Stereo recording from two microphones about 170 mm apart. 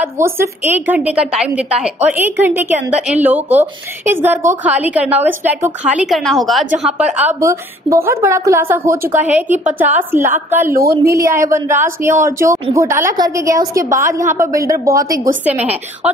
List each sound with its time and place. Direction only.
0.0 s a woman's voice: 15° right (ahead or behind)
7.0 s a woman's voice: 10° right (ahead or behind)